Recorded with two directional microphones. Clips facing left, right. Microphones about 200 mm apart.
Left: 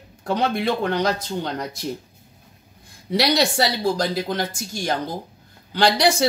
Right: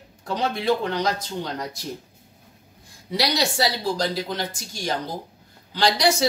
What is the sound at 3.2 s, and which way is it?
Speech, 55° left (ahead or behind).